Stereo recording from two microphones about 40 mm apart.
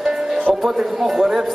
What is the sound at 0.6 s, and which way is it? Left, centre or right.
Speech, centre.